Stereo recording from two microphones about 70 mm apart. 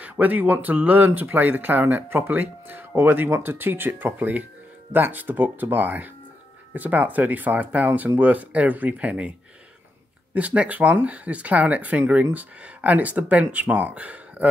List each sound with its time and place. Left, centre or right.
0.0 s speech: right
10.3 s speech: centre